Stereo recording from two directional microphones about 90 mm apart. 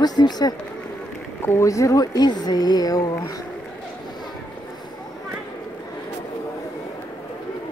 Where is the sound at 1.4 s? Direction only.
30° left (ahead or behind).